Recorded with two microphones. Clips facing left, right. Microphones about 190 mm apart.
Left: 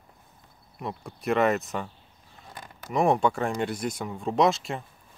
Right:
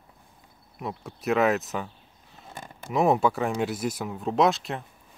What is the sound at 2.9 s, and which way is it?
Speech, 5° right (ahead or behind).